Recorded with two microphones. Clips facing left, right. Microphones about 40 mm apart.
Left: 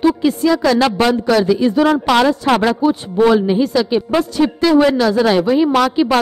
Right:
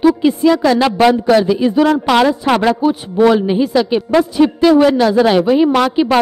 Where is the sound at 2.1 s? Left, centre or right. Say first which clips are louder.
Right 1 dB; centre.